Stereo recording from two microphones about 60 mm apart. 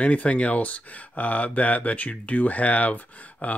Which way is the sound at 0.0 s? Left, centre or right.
Left.